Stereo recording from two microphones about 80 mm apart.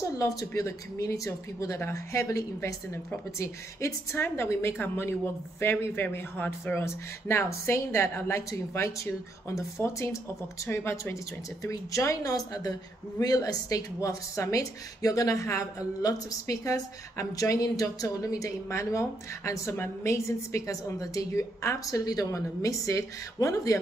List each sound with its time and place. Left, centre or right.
0.0 s speech: left
11.6 s a woman's voice: left